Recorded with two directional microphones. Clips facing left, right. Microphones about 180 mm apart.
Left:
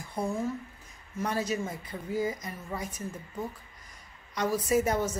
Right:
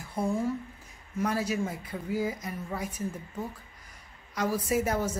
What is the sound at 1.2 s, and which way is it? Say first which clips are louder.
Speech: right 1 dB; 10° right (ahead or behind).